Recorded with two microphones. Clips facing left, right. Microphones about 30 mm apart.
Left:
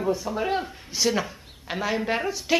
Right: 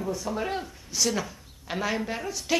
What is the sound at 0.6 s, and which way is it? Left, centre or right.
A woman's voice, left.